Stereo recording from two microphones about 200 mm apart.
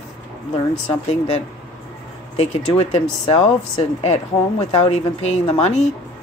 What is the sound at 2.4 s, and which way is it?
A woman's voice, 30° left (ahead or behind).